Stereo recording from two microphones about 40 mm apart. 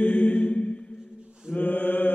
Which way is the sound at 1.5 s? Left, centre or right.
Left.